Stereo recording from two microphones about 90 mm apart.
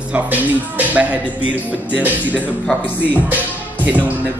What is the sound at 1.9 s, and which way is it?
Speech, 15° right (ahead or behind).